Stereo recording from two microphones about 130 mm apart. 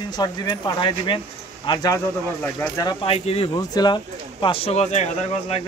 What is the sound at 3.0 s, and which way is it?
Speech, 50° left (ahead or behind).